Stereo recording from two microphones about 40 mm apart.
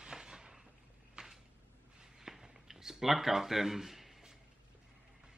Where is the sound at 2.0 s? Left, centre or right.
Centre.